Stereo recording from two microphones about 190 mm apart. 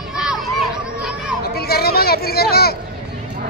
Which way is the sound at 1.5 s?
55° left (ahead or behind).